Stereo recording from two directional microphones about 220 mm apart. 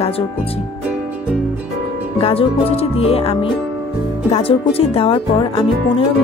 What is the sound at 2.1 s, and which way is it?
A woman's voice, 25° left (ahead or behind).